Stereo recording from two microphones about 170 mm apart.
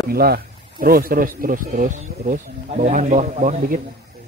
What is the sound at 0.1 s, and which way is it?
Speech, 65° right (ahead or behind).